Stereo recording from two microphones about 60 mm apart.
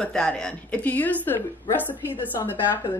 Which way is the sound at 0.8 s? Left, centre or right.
Left.